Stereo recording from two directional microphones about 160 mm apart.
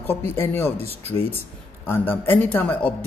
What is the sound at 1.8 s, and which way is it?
Speech, 15° left (ahead or behind).